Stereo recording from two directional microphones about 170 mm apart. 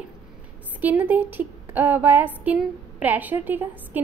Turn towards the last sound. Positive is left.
turn(degrees=-10)  # may be behind; listen again after turning